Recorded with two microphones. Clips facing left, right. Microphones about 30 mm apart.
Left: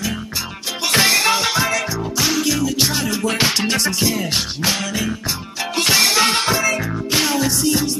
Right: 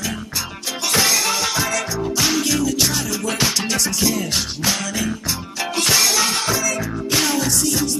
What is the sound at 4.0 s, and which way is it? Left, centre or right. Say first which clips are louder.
Music: left 1 dB; centre.